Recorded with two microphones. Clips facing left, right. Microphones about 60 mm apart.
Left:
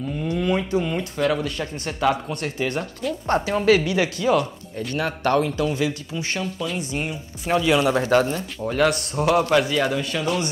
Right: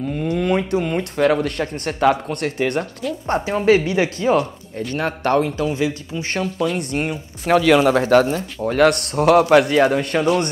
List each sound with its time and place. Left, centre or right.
0.0 s speech: right
3.3 s a man's voice: right
6.8 s speech: right